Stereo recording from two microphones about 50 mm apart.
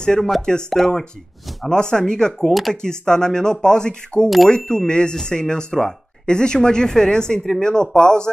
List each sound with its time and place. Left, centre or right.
0.0 s speech: centre